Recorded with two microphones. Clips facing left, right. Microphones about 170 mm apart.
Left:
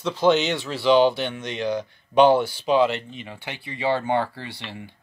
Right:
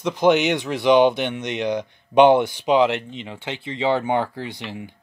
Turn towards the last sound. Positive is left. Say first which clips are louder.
# right 4 dB
turn(degrees=-15)  # may be behind; listen again after turning